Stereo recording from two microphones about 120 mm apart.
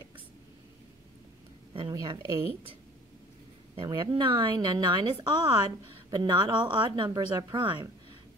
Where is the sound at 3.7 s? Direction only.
35° right (ahead or behind).